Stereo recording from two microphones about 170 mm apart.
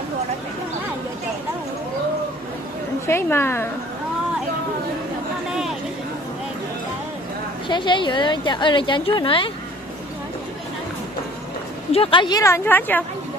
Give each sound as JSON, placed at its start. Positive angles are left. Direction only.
{"t": 3.1, "sound": "a woman's voice", "side_deg": 15}
{"t": 7.6, "sound": "a woman's voice", "side_deg": 30}
{"t": 11.9, "sound": "a woman's voice", "side_deg": 30}